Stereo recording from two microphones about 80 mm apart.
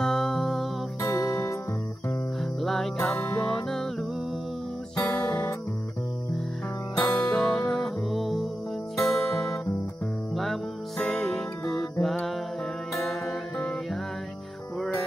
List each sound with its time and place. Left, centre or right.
0.0 s music: centre
1.2 s music: left
2.6 s music: centre
3.2 s music: left
3.4 s music: centre
4.9 s music: left
7.0 s music: centre